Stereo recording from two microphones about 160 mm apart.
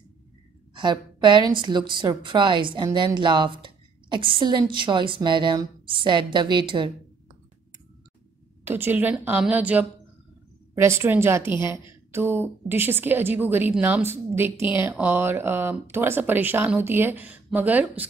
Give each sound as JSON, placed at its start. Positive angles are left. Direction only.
{"t": 0.7, "sound": "speech", "side_deg": -30}
{"t": 8.6, "sound": "a woman's voice", "side_deg": -15}